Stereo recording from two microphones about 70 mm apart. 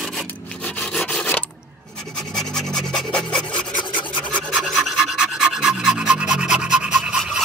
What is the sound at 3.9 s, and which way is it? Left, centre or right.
Filing, left.